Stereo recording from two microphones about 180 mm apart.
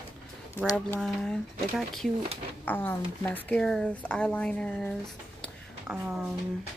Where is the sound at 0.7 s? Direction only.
10° left (ahead or behind).